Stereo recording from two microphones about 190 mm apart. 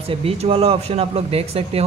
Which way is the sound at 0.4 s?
30° right (ahead or behind).